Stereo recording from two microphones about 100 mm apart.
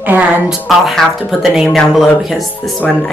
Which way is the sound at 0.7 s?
Centre (ahead or behind).